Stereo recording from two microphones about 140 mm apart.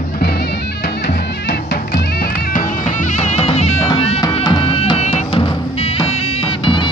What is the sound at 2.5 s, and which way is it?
Music, 65° left (ahead or behind).